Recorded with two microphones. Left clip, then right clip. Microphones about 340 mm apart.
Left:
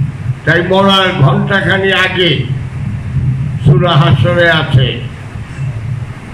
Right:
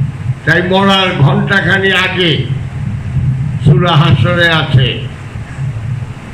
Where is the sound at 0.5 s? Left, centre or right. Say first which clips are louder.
Left 1 dB; centre.